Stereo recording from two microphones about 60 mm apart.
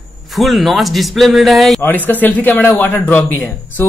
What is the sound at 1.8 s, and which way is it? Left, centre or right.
A man's voice, left.